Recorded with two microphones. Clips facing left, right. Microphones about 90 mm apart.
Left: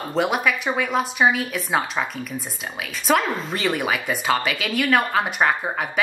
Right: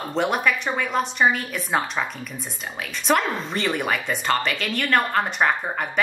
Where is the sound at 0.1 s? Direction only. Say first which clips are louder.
Left 1 dB; centre (ahead or behind).